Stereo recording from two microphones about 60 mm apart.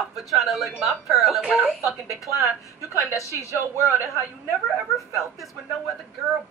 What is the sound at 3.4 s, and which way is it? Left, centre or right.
Speech, right.